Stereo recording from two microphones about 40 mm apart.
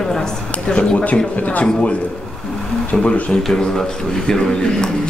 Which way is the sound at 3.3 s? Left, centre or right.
Centre.